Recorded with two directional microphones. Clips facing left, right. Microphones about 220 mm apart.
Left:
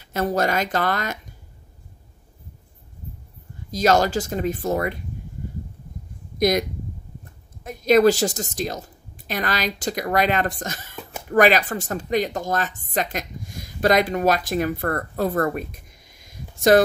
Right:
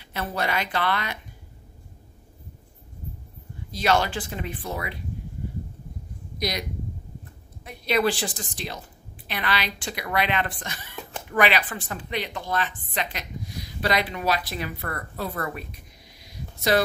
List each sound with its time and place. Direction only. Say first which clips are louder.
0.0 s a woman's voice: left 7 dB; 45° left (ahead or behind)
3.7 s a woman's voice: left 5 dB; 40° left (ahead or behind)
6.3 s speech: left 10 dB; 50° left (ahead or behind)
7.6 s a woman's voice: left 8 dB; 45° left (ahead or behind)